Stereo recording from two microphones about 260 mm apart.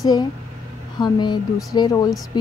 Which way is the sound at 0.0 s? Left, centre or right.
Centre.